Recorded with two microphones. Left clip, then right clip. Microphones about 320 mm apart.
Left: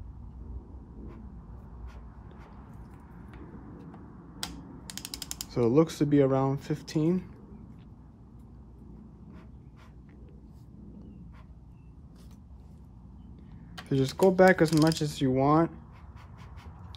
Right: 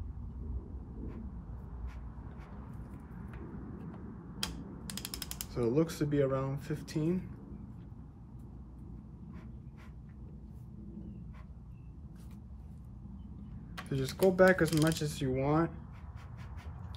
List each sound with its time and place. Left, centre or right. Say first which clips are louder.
4.8 s ratchet: left 2 dB; centre
5.5 s speech: left 7 dB; centre
13.8 s speech: left 5 dB; centre